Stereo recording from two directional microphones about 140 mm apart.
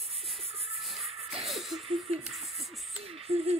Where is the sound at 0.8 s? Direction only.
Centre (ahead or behind).